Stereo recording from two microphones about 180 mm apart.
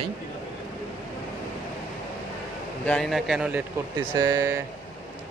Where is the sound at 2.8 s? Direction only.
5° left (ahead or behind).